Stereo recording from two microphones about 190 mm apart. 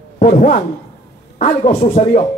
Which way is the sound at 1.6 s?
30° left (ahead or behind).